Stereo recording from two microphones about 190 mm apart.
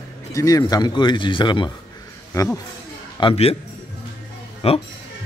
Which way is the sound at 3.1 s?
30° left (ahead or behind).